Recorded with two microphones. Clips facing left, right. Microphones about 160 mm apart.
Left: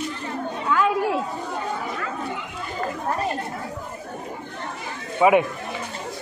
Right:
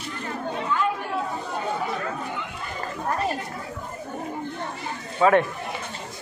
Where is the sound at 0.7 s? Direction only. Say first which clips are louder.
Left 5 dB; 90° left.